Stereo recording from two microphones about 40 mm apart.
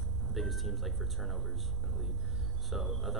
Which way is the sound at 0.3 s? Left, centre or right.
Centre.